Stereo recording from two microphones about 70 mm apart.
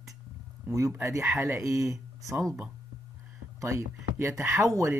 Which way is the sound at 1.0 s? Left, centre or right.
Right.